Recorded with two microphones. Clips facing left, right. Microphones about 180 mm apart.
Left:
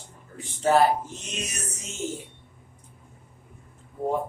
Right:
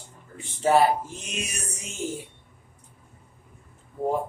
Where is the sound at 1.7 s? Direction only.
10° right (ahead or behind).